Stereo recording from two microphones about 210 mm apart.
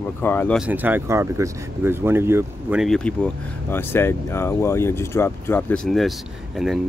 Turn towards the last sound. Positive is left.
turn(degrees=-5)  # may be behind; listen again after turning